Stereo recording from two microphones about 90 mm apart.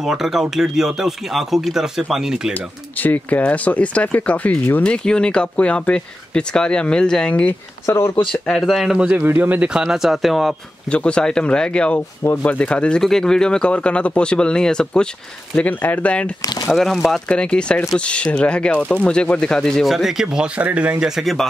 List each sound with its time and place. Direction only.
0.0 s speech: 5° right (ahead or behind)
2.5 s speech: 20° left (ahead or behind)
7.8 s speech: 30° left (ahead or behind)
8.3 s speech: 5° left (ahead or behind)
9.1 s speech: 20° right (ahead or behind)
9.7 s speech: 5° right (ahead or behind)
10.9 s speech: 10° left (ahead or behind)
16.6 s speech: centre (ahead or behind); by 21.1 s 15° right (ahead or behind)
21.1 s speech: centre (ahead or behind)